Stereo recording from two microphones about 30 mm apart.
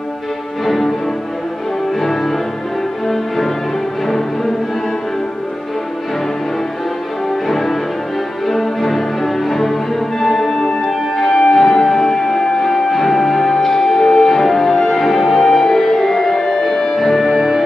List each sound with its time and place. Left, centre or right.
0.7 s music: centre
2.0 s music: centre
7.4 s music: centre